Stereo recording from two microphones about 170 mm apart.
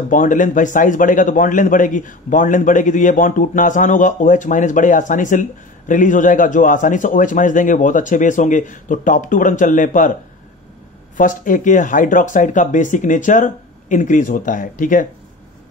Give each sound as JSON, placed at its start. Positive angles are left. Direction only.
{"t": 0.1, "sound": "a man's voice", "side_deg": 50}
{"t": 11.1, "sound": "a man's voice", "side_deg": 50}